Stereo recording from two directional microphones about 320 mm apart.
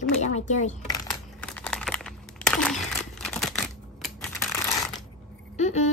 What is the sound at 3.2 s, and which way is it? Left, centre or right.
Typewriter, centre.